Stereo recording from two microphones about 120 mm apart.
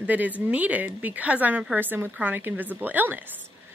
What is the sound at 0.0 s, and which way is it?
A woman's voice, 15° right (ahead or behind).